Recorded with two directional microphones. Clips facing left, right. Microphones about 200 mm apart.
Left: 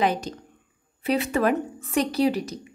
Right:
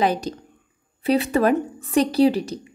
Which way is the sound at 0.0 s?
35° right (ahead or behind).